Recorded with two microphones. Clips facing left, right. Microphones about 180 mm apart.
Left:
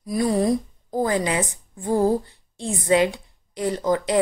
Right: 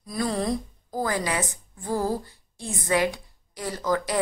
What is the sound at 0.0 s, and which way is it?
A woman's voice, 15° left (ahead or behind).